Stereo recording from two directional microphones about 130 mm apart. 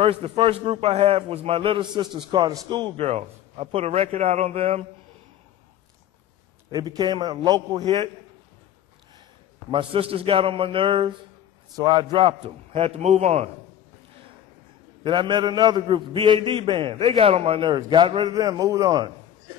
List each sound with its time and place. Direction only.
0.0 s a man's voice: 45° right (ahead or behind)
3.0 s a man's voice: 55° right (ahead or behind)
6.7 s a man's voice: 30° right (ahead or behind)
9.7 s a man's voice: 45° right (ahead or behind)
15.0 s a man's voice: 40° right (ahead or behind)
18.3 s a man's voice: 30° right (ahead or behind)